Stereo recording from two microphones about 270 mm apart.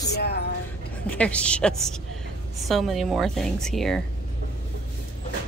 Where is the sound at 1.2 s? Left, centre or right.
Centre.